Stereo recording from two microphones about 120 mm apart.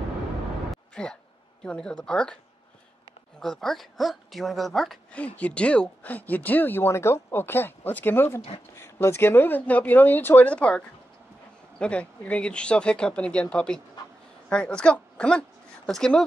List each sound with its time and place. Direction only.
0.7 s a sound: 10° left (ahead or behind)
1.6 s speech: 5° left (ahead or behind)
3.3 s speech: 5° left (ahead or behind)
11.8 s speech: 10° left (ahead or behind)